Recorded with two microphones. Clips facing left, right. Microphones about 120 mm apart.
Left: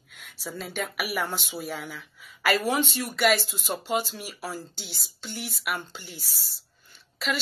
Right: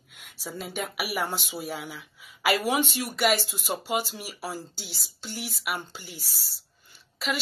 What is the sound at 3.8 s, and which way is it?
Speech, 5° right (ahead or behind).